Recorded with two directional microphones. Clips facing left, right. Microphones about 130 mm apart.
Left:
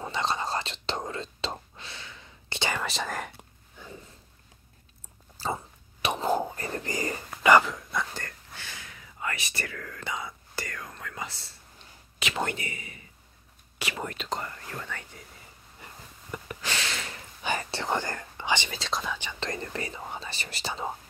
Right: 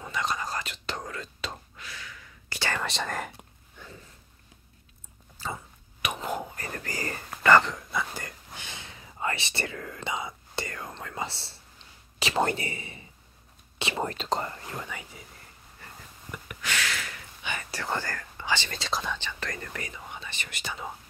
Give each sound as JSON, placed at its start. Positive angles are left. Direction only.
{"t": 0.0, "sound": "whispering", "side_deg": 30}
{"t": 2.7, "sound": "whispering", "side_deg": 0}
{"t": 5.4, "sound": "a sound", "side_deg": 35}
{"t": 6.0, "sound": "whispering", "side_deg": 30}
{"t": 7.7, "sound": "whispering", "side_deg": 0}
{"t": 16.3, "sound": "whispering", "side_deg": 30}
{"t": 18.7, "sound": "whispering", "side_deg": 0}
{"t": 19.4, "sound": "whispering", "side_deg": 25}